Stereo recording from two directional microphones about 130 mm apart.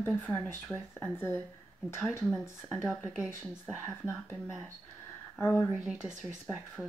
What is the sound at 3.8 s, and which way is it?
Speech, 20° left (ahead or behind).